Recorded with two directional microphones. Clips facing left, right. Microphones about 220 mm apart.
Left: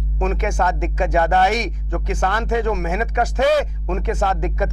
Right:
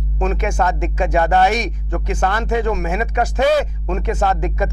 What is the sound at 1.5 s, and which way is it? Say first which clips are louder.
Speech: right 1 dB; 10° right (ahead or behind).